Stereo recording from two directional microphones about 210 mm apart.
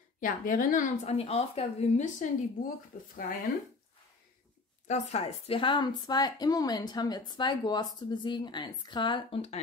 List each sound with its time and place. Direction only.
0.2 s speech: 40° left (ahead or behind)
4.8 s speech: 30° left (ahead or behind)